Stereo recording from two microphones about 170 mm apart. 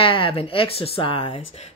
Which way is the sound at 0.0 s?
30° left (ahead or behind).